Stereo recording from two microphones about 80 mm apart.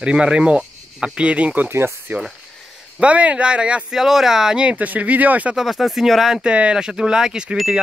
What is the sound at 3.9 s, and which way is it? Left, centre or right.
Speech, centre.